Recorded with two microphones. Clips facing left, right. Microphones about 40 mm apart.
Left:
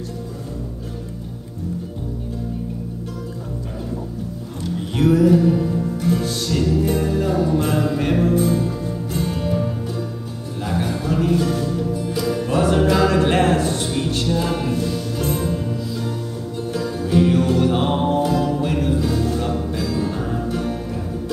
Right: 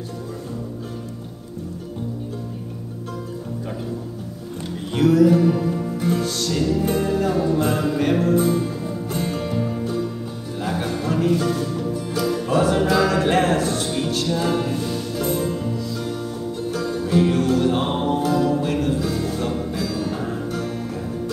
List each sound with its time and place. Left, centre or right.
4.9 s music: centre
5.4 s music: centre
6.1 s music: centre
6.8 s music: centre
7.4 s music: centre
8.4 s music: centre
15.2 s music: centre
16.7 s music: centre
17.3 s music: centre